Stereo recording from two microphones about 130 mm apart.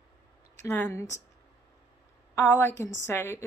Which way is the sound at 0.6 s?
15° left (ahead or behind).